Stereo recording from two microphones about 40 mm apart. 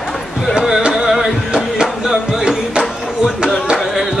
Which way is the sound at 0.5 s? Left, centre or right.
Centre.